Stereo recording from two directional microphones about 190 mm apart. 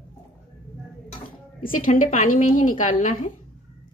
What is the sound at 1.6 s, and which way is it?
A woman's voice, 45° left (ahead or behind).